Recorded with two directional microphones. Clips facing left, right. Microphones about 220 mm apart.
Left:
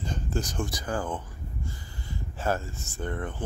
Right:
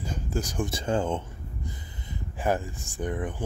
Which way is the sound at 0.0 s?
10° right (ahead or behind).